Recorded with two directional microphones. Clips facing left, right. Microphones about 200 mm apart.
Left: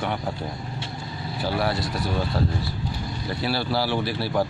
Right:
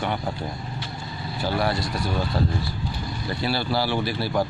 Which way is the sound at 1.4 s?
Centre (ahead or behind).